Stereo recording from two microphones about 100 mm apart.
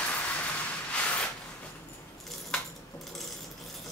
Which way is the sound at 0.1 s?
15° left (ahead or behind).